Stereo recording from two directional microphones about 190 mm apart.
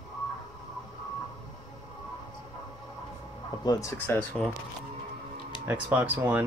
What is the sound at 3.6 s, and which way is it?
Speech, 20° left (ahead or behind).